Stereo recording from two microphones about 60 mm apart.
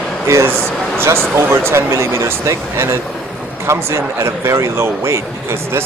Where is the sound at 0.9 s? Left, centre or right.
Right.